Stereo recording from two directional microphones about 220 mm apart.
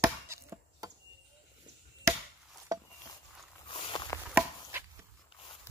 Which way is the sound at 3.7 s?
20° left (ahead or behind).